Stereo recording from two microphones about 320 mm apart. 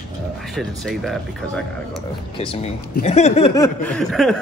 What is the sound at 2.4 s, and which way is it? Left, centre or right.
Speech, centre.